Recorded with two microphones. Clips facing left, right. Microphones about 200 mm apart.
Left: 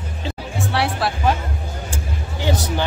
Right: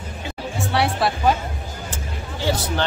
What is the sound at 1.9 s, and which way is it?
Music, 15° left (ahead or behind).